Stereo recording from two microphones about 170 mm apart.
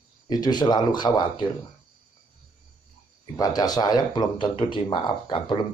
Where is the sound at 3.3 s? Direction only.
20° left (ahead or behind).